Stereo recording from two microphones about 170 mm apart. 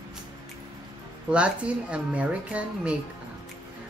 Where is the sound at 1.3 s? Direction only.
5° right (ahead or behind).